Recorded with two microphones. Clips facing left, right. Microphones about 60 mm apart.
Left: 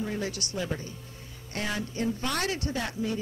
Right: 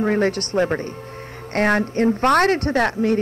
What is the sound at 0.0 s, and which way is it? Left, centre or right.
Speech, right.